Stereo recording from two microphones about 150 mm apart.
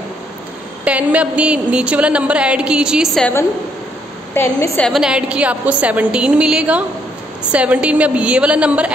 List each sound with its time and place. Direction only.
0.8 s a woman's voice: 10° right (ahead or behind)
4.3 s a woman's voice: 15° left (ahead or behind)
4.8 s a woman's voice: centre (ahead or behind)